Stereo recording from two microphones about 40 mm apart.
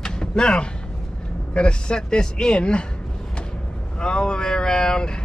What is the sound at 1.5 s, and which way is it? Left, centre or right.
A man's voice, left.